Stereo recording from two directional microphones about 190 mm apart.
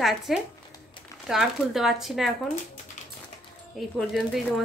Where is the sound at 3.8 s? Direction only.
Centre (ahead or behind).